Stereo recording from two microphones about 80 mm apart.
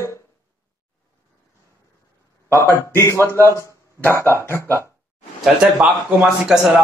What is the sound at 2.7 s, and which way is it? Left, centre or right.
Speech, left.